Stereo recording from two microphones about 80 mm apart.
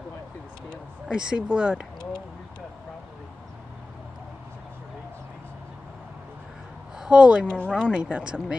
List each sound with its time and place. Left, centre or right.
1.0 s speech: centre
7.0 s speech: centre
7.4 s speech: centre
7.9 s speech: centre